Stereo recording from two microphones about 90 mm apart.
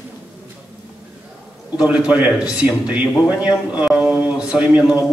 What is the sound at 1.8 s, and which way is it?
A man's voice, 10° right (ahead or behind).